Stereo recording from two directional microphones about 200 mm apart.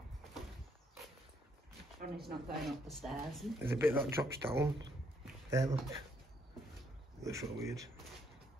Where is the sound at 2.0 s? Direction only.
50° right (ahead or behind).